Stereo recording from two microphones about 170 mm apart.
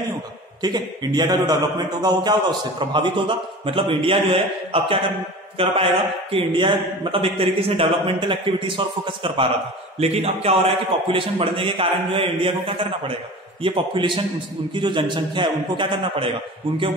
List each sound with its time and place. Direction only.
0.6 s a man's voice: 25° right (ahead or behind)